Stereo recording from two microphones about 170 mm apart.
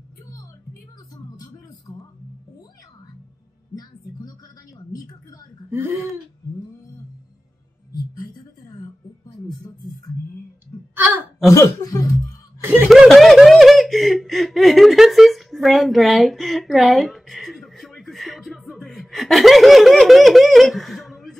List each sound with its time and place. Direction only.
1.1 s music: 20° left (ahead or behind)
5.7 s speech: 10° right (ahead or behind)
10.7 s a sound: 15° left (ahead or behind)
11.5 s speech: 20° left (ahead or behind)
12.6 s snicker: 5° right (ahead or behind)